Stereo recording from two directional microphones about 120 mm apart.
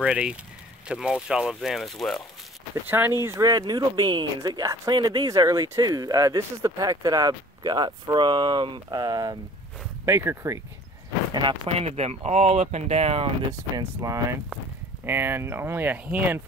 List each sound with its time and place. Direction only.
0.0 s speech: 10° right (ahead or behind)
2.7 s speech: 20° right (ahead or behind)
11.3 s speech: 45° right (ahead or behind)
11.7 s speech: 60° right (ahead or behind)
13.7 s speech: 30° right (ahead or behind)